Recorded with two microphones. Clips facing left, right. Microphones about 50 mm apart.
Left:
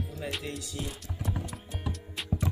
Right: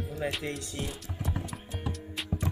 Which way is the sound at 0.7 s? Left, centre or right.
Centre.